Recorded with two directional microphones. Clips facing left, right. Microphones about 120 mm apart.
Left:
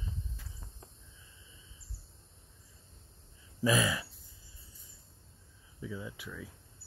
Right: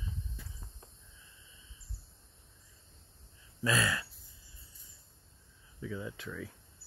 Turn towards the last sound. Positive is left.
turn(degrees=5)  # may be behind; listen again after turning